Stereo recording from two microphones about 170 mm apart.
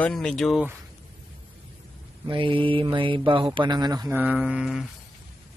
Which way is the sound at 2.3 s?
30° right (ahead or behind).